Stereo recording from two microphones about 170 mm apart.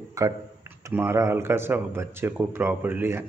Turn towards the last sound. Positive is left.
turn(degrees=-10)  # may be behind; listen again after turning